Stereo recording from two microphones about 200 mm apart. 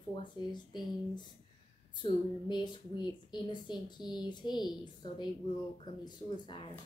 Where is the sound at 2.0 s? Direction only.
20° left (ahead or behind).